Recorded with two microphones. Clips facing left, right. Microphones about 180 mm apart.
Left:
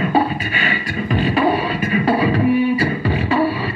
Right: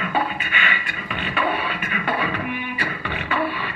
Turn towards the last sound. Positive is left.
turn(degrees=35)  # may be behind; listen again after turning